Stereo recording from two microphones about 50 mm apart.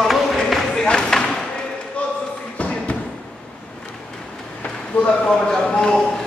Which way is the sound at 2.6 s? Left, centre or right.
Left.